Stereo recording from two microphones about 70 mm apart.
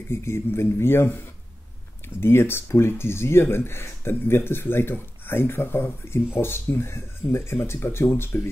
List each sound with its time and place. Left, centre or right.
0.1 s speech: left